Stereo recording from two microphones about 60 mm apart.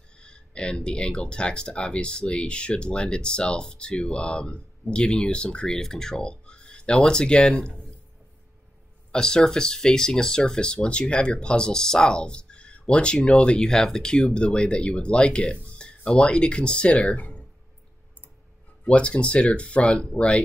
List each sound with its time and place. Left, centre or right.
0.2 s speech: centre
9.1 s speech: centre
18.9 s speech: centre